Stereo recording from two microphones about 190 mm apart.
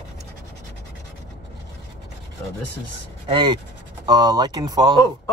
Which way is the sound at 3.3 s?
25° right (ahead or behind).